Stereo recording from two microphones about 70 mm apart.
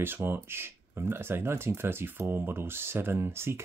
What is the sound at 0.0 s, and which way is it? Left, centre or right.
Speech, right.